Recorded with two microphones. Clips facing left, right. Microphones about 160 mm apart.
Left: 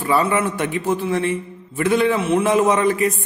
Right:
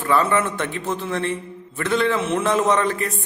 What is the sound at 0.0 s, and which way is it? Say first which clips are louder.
A man's voice: left 1 dB; 10° left (ahead or behind).